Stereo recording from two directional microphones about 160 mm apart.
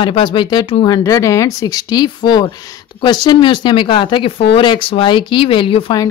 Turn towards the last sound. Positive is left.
turn(degrees=35)  # may be behind; listen again after turning